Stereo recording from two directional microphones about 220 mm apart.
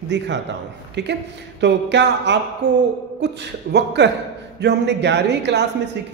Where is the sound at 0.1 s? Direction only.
50° right (ahead or behind).